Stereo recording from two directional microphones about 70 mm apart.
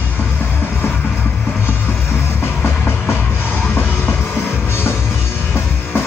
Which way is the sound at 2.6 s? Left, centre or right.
Left.